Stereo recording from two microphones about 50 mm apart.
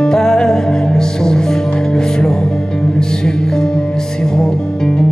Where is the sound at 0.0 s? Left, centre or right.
Centre.